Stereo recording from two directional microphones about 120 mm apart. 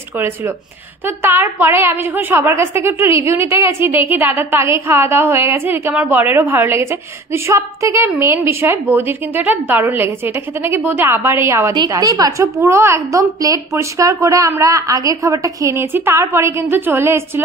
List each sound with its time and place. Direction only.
1.0 s a woman's voice: 20° right (ahead or behind)
11.7 s a woman's voice: 35° right (ahead or behind); by 17.2 s 20° right (ahead or behind)